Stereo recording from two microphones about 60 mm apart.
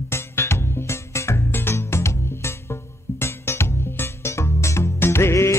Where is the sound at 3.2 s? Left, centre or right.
Left.